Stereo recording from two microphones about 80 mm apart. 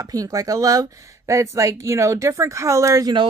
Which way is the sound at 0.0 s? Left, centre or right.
Right.